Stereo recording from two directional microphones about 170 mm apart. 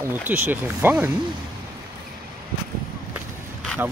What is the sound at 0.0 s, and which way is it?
Speech, 10° right (ahead or behind).